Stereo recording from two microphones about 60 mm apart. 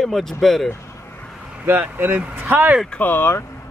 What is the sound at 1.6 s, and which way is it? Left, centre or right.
Speech, right.